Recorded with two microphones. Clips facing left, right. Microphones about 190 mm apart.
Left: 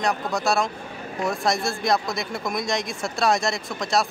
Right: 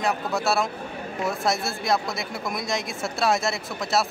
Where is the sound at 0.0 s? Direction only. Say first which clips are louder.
Left 1 dB; 5° right (ahead or behind).